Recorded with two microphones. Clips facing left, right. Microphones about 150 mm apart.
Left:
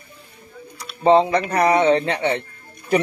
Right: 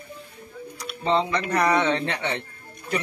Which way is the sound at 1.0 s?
50° left (ahead or behind).